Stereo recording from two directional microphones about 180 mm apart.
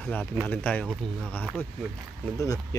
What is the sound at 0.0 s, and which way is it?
Speech, 10° left (ahead or behind).